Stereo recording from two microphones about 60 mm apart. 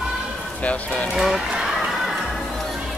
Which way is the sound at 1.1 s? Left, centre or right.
Centre.